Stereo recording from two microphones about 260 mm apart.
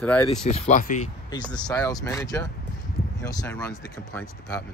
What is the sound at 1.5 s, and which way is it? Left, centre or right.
Speech, centre.